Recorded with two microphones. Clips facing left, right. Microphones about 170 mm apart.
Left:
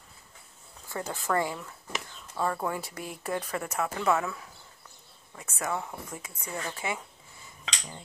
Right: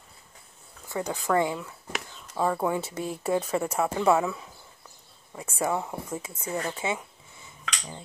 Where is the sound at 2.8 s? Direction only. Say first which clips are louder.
Right 7 dB; 30° right (ahead or behind).